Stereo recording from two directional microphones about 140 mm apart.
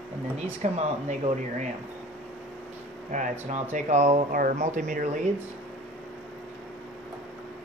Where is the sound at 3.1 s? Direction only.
60° right (ahead or behind).